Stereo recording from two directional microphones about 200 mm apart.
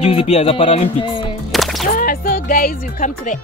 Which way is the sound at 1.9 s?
45° left (ahead or behind).